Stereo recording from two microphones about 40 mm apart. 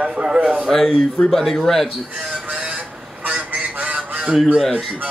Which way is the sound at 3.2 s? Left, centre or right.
Right.